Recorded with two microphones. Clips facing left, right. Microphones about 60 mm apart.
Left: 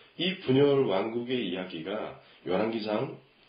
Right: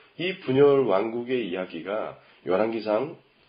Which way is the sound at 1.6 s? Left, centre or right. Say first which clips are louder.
Right 4 dB; right.